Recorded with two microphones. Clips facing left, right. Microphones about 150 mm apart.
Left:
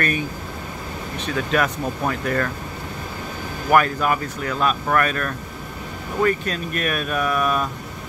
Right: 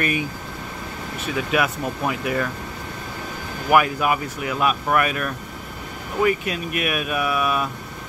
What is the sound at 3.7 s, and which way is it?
Speech, 10° right (ahead or behind).